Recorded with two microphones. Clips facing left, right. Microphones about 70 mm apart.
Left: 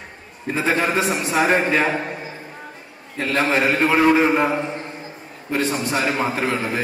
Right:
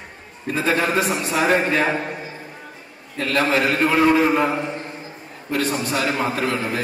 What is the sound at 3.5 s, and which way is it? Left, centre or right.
A man's voice, left.